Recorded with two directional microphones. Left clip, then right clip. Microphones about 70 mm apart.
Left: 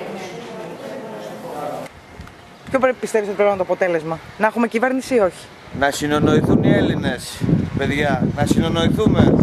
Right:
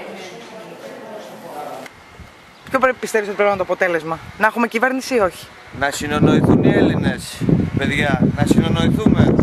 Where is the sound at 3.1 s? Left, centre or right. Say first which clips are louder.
Even; right.